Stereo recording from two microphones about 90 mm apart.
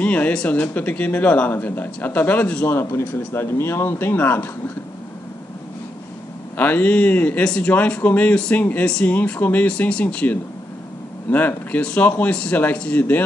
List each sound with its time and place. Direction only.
0.0 s speech: 15° left (ahead or behind)
2.7 s speech: 30° left (ahead or behind)
6.5 s speech: 20° left (ahead or behind)